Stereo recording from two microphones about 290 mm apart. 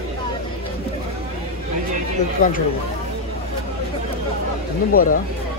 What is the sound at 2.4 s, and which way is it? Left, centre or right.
Speech, left.